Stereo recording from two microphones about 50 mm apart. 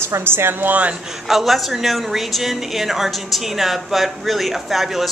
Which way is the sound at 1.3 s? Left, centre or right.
Centre.